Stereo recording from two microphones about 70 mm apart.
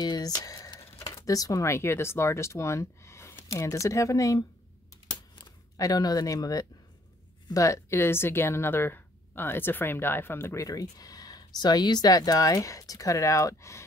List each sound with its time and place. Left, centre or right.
0.0 s speech: left
5.8 s speech: left
7.5 s a woman's voice: left
10.7 s speech: left